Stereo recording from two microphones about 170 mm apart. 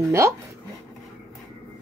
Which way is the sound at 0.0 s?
15° right (ahead or behind).